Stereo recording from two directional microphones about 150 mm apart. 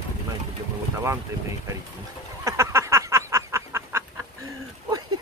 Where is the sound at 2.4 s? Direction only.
20° right (ahead or behind).